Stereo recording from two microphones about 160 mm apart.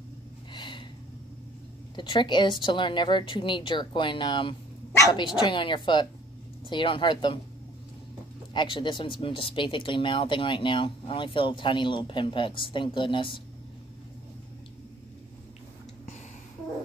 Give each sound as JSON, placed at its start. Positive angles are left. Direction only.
{"t": 0.5, "sound": "a sound", "side_deg": 30}
{"t": 2.0, "sound": "a woman's voice", "side_deg": 30}
{"t": 4.9, "sound": "bow-wow", "side_deg": 20}
{"t": 5.4, "sound": "speech", "side_deg": 30}
{"t": 8.5, "sound": "speech", "side_deg": 30}